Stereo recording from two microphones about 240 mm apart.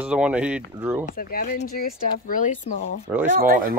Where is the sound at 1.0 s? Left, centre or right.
Left.